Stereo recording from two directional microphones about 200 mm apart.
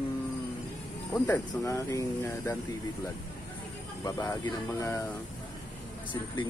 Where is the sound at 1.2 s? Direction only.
15° left (ahead or behind).